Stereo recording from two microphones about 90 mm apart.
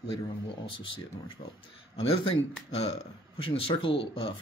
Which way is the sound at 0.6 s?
70° left (ahead or behind).